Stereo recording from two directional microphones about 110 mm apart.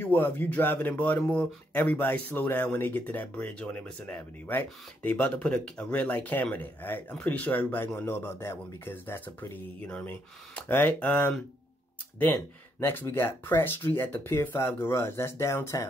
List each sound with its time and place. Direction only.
0.0 s speech: 20° left (ahead or behind)
13.0 s speech: 20° left (ahead or behind)